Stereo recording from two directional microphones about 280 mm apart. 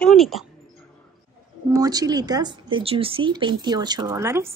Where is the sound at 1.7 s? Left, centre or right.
Centre.